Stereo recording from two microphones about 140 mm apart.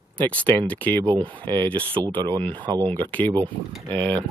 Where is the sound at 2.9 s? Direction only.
10° left (ahead or behind).